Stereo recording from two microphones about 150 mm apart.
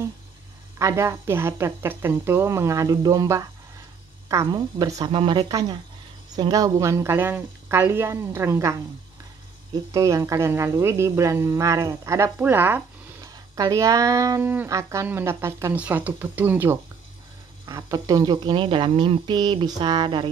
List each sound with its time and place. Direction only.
0.7 s a woman's voice: 20° right (ahead or behind)
5.1 s speech: 35° right (ahead or behind)
5.5 s speech: 25° right (ahead or behind)
9.9 s speech: 20° right (ahead or behind)